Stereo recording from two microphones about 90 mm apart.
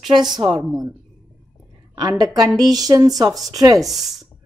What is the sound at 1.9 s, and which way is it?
A woman's voice, 50° right (ahead or behind).